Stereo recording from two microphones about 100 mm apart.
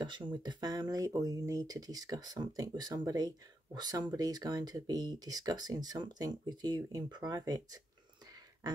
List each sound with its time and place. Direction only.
0.0 s speech: 50° right (ahead or behind)